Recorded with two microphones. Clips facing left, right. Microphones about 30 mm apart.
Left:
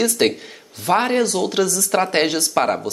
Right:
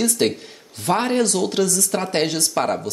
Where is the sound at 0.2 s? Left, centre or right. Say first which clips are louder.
Left 2 dB; centre.